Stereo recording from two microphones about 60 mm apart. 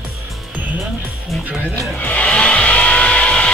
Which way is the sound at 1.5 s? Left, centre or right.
Right.